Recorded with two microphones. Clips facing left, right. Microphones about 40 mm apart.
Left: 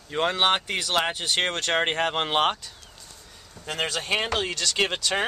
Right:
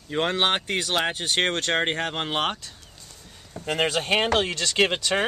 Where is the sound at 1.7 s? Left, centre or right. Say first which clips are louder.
Left 1 dB; centre.